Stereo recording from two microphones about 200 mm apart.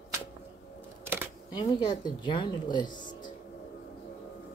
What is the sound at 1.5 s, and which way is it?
A woman's voice, 20° left (ahead or behind).